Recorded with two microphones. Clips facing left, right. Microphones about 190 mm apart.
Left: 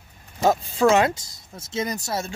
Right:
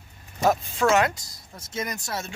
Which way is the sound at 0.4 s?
30° left (ahead or behind).